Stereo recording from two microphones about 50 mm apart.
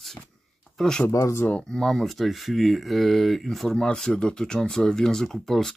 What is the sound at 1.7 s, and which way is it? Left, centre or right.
Speech, centre.